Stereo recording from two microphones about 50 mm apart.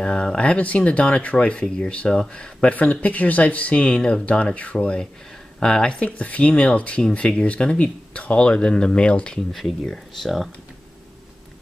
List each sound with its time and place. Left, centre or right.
0.0 s speech: centre
2.7 s speech: left
9.5 s speech: centre